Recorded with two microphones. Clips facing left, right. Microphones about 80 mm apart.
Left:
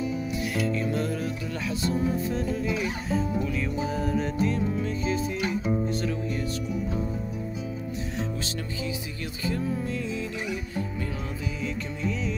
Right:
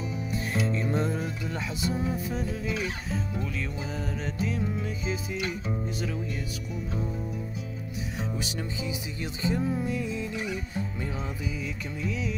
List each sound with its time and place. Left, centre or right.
0.6 s music: right
1.8 s music: centre
2.7 s music: centre
9.4 s music: centre
11.6 s music: centre